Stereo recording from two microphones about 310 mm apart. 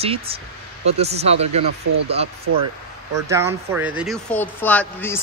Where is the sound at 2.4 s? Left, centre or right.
Right.